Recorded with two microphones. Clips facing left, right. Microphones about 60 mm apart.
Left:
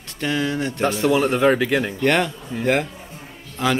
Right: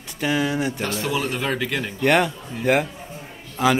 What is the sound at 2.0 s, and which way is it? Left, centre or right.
A man's voice, centre.